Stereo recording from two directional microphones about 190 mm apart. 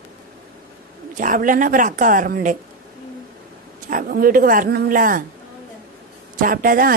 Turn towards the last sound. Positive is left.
turn(degrees=-45)  # may be behind; listen again after turning